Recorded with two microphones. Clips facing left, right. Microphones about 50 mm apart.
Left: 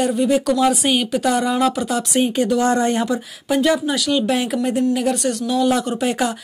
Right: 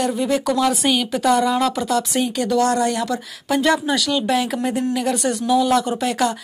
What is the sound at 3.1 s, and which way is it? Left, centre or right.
Speech, centre.